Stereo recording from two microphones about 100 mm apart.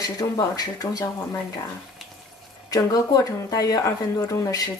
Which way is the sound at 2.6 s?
40° left (ahead or behind).